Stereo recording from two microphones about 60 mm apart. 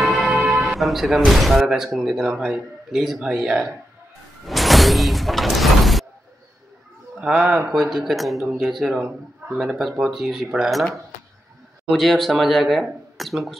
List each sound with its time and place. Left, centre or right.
0.0 s music: centre
0.7 s speech: centre
4.5 s a sound: centre
7.2 s speech: centre
9.4 s a sound: right
9.8 s speech: centre